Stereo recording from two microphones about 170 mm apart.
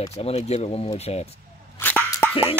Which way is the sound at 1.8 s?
10° left (ahead or behind).